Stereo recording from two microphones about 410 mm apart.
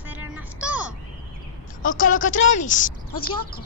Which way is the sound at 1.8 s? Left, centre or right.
Left.